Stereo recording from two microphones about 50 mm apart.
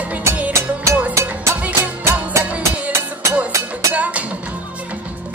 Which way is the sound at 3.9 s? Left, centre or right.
Right.